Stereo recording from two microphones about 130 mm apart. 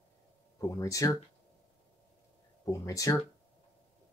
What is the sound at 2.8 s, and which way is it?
Speech, 25° left (ahead or behind).